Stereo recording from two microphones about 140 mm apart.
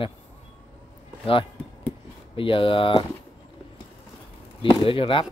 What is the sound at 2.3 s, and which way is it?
Speech, 40° left (ahead or behind).